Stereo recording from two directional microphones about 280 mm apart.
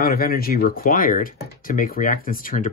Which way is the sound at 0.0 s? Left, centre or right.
Left.